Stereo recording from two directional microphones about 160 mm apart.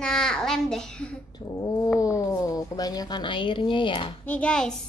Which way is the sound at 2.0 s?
20° left (ahead or behind).